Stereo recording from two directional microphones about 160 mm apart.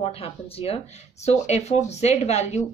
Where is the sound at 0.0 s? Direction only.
35° left (ahead or behind).